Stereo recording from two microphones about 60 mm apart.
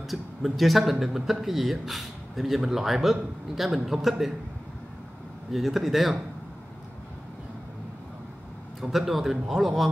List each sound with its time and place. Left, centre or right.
0.1 s speech: centre
5.5 s speech: centre
8.8 s speech: centre